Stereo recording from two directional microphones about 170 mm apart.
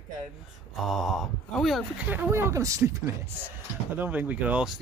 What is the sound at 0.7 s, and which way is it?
A man's voice, centre (ahead or behind).